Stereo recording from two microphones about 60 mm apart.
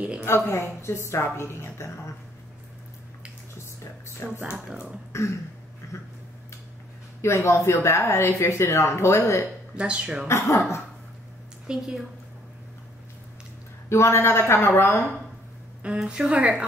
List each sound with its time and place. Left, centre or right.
0.2 s speech: left
4.4 s speech: centre
5.1 s throat clearing: left
7.2 s speech: left
9.8 s speech: centre
10.2 s speech: left
11.6 s a woman's voice: centre
13.8 s speech: left
16.1 s a woman's voice: centre